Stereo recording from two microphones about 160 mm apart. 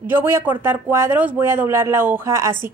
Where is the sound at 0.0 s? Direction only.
15° right (ahead or behind).